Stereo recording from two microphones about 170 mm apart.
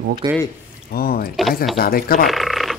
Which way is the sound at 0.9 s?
60° left (ahead or behind).